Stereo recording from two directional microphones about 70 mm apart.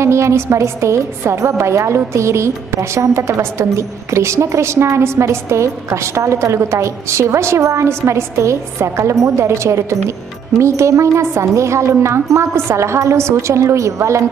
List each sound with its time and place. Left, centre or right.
0.0 s a woman's voice: right